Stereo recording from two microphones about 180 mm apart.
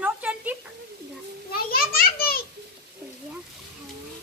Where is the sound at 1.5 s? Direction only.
55° left (ahead or behind).